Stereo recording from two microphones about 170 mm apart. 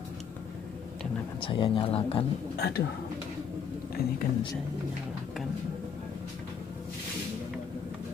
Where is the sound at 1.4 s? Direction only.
30° left (ahead or behind).